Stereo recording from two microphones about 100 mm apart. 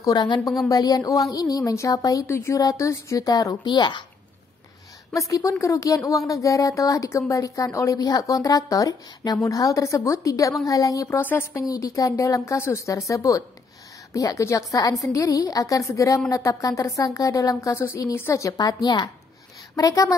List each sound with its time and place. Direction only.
0.0 s a woman's voice: 45° left (ahead or behind)
5.1 s a woman's voice: 30° left (ahead or behind)
11.1 s a woman's voice: 20° left (ahead or behind)
11.6 s a woman's voice: 35° left (ahead or behind)
19.7 s a woman's voice: 35° left (ahead or behind)